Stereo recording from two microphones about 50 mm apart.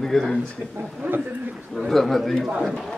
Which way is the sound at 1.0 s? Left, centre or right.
Right.